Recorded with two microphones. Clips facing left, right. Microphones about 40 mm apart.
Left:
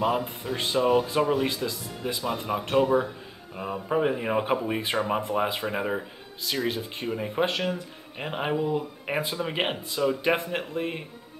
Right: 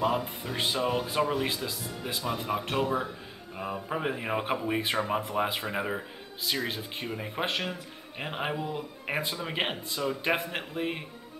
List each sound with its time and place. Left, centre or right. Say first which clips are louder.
0.0 s speech: left 2 dB; centre